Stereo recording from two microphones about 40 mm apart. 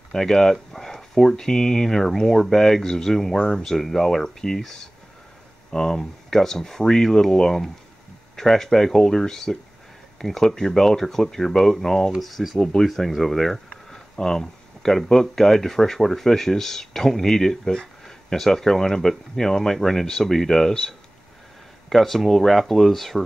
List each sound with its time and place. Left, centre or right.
0.1 s speech: centre
12.2 s speech: centre
12.5 s speech: centre
12.8 s speech: centre
21.8 s speech: centre